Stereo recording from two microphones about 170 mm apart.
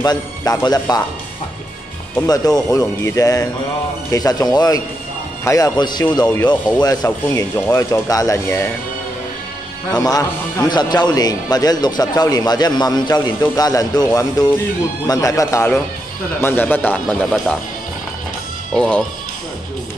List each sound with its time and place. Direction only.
0.0 s a man's voice: 20° left (ahead or behind)
2.2 s a man's voice: 20° left (ahead or behind)
7.1 s speech: 10° left (ahead or behind)
9.9 s a man's voice: 20° left (ahead or behind)
18.7 s speech: 5° left (ahead or behind)